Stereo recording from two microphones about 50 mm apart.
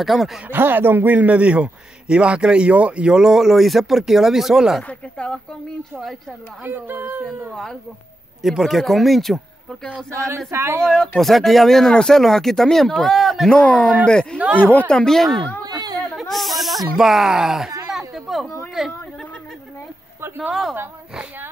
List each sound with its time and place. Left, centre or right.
0.0 s speech: centre
0.5 s a man's voice: right; by 4.8 s centre
5.1 s speech: centre
6.6 s speech: right
8.4 s speech: centre
10.1 s speech: right
10.9 s speech: centre
13.5 s speech: left
14.6 s speech: left
14.9 s speech: centre
17.9 s a sound: centre
18.8 s speech: centre